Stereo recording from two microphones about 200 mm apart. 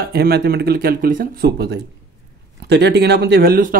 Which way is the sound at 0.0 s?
55° right (ahead or behind).